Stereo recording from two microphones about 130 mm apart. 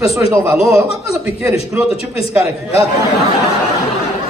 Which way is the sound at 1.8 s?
5° right (ahead or behind).